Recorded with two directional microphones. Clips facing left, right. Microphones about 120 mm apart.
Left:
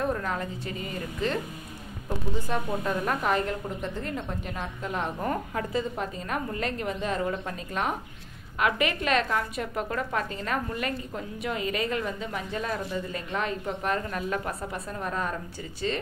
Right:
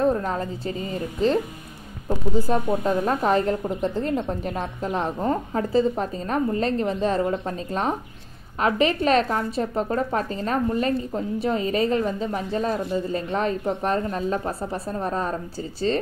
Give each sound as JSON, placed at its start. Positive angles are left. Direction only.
{"t": 0.0, "sound": "a woman's voice", "side_deg": -30}